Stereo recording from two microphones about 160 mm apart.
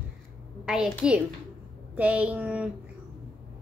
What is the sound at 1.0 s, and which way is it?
A woman's voice, 5° right (ahead or behind).